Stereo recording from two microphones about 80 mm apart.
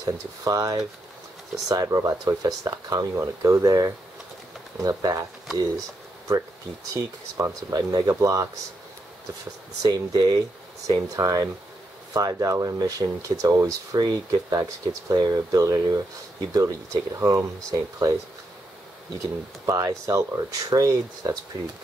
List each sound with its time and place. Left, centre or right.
0.0 s speech: right
3.6 s speech: right
6.9 s speech: right
9.8 s speech: right
19.1 s speech: right